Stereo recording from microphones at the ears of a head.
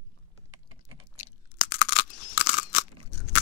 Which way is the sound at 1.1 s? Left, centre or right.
Left.